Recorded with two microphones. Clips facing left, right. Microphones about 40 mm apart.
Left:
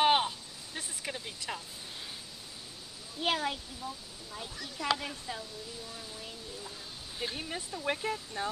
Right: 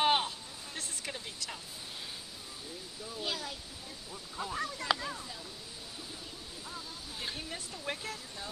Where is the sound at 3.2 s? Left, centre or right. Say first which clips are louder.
Left 7 dB; left.